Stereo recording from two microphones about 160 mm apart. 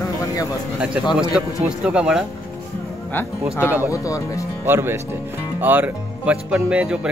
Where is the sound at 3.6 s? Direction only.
10° right (ahead or behind).